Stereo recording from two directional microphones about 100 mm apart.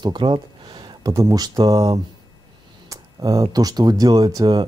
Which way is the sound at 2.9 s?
35° right (ahead or behind).